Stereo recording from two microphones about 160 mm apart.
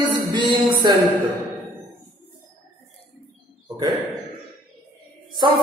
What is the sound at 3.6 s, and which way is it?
Bird, 25° right (ahead or behind).